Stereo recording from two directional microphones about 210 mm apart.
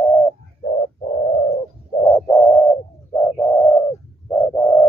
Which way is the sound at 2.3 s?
15° left (ahead or behind).